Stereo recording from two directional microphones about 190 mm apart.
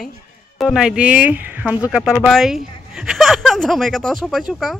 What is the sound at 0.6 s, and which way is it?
Speech, centre (ahead or behind).